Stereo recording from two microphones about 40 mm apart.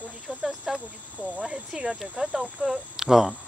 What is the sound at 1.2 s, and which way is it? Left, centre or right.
Speech, right.